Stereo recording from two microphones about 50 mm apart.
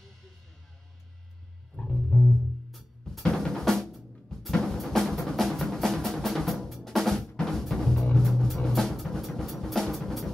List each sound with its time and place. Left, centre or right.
1.8 s music: left
3.3 s drum kit: centre
4.5 s music: centre
8.3 s drum: centre